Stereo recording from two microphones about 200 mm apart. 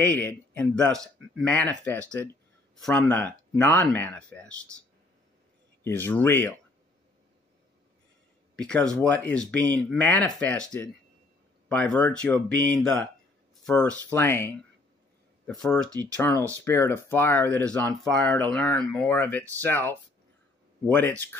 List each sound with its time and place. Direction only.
0.0 s speech: 10° left (ahead or behind)
5.9 s speech: 10° left (ahead or behind)
8.5 s speech: 5° left (ahead or behind)
15.9 s speech: 20° right (ahead or behind)
16.6 s speech: 10° left (ahead or behind)